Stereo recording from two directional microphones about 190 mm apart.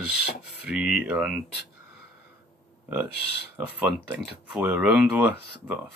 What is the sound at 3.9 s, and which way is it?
Speech, 10° right (ahead or behind).